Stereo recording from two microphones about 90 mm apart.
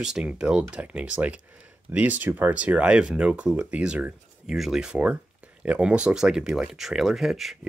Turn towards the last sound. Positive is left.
turn(degrees=0)  # may be behind; listen again after turning